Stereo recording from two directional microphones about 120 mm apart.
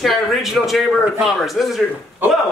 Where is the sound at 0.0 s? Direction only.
Centre (ahead or behind).